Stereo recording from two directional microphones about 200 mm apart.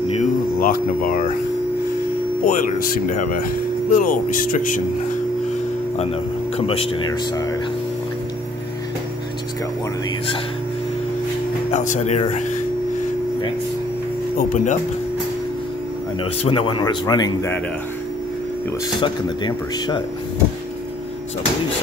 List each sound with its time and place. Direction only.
0.1 s air conditioning: 40° left (ahead or behind)
2.4 s speech: 40° left (ahead or behind)
6.5 s speech: 30° left (ahead or behind)
11.7 s speech: 35° left (ahead or behind)
14.5 s speech: 40° left (ahead or behind)
16.4 s speech: 25° left (ahead or behind)
18.9 s speech: 20° left (ahead or behind)